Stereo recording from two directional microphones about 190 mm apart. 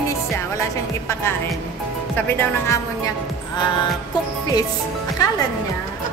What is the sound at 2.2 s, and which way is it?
Speech, 10° left (ahead or behind).